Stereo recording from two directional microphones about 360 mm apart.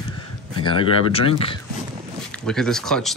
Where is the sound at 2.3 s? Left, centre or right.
Centre.